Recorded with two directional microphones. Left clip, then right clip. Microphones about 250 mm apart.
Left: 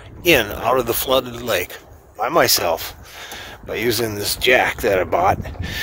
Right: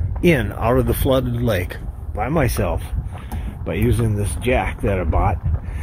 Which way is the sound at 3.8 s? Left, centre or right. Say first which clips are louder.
Left 4 dB; left.